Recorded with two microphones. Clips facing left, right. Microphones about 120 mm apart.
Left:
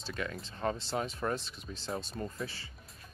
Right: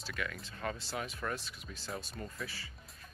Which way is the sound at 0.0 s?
30° left (ahead or behind).